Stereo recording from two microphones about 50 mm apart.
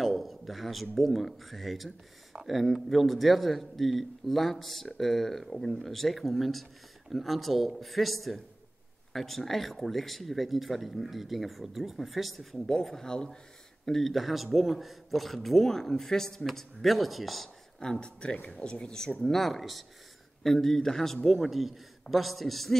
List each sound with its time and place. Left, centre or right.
0.0 s a man's voice: centre
12.5 s a man's voice: centre
17.7 s a man's voice: centre